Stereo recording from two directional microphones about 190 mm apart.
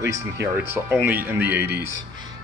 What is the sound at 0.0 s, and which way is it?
Speech, 15° right (ahead or behind).